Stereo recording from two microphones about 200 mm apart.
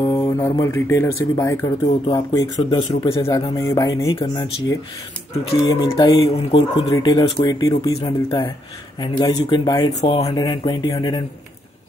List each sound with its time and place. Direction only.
0.0 s speech: 15° left (ahead or behind)
2.9 s speech: 30° left (ahead or behind)
3.2 s speech: 15° left (ahead or behind)